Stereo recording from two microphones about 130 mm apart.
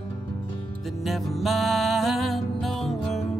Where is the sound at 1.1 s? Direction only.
Centre (ahead or behind).